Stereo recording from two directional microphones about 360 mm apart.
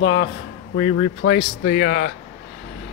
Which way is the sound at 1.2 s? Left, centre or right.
Left.